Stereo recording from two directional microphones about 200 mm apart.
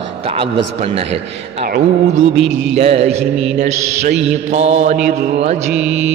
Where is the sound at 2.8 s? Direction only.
30° right (ahead or behind).